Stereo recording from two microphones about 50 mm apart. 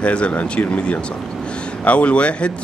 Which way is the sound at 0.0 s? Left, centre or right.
Left.